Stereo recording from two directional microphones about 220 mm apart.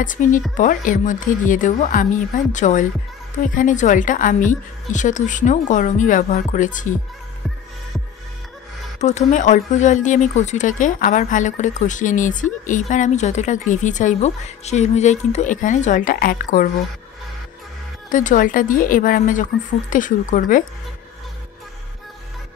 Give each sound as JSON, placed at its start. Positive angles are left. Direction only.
{"t": 0.0, "sound": "speech", "side_deg": 35}
{"t": 9.0, "sound": "speech", "side_deg": 35}
{"t": 18.1, "sound": "speech", "side_deg": 35}